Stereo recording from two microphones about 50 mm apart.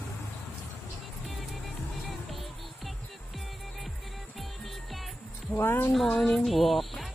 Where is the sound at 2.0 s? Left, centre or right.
Centre.